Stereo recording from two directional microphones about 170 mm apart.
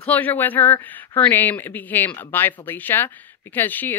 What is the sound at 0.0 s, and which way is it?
Speech, 10° left (ahead or behind).